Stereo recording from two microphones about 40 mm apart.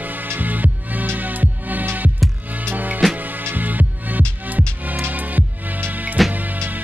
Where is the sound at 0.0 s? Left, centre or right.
Right.